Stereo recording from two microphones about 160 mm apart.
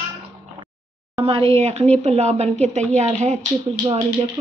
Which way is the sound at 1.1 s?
35° right (ahead or behind).